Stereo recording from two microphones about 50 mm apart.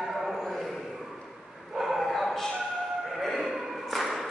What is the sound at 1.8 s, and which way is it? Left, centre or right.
Dog, centre.